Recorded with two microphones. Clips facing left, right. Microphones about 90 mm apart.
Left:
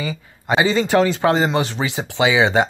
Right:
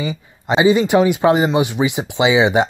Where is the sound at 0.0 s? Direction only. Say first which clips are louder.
Right 3 dB; 20° right (ahead or behind).